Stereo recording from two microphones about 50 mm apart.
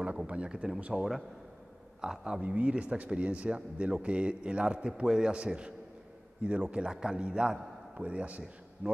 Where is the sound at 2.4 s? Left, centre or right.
Right.